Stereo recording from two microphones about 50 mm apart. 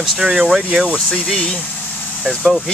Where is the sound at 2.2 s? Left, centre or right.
Centre.